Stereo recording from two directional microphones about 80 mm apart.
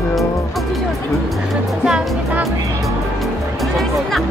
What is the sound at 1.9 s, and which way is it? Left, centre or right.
Speech, centre.